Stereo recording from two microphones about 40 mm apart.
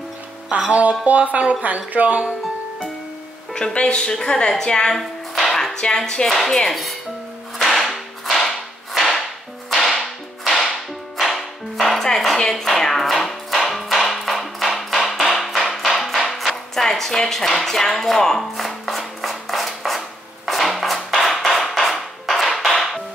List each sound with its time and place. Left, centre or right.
0.7 s speech: right
3.5 s a woman's voice: centre
4.9 s music: centre
5.8 s a woman's voice: centre
6.7 s speech: centre
7.5 s whip: centre
11.1 s music: centre
12.3 s music: centre
20.4 s a sound: centre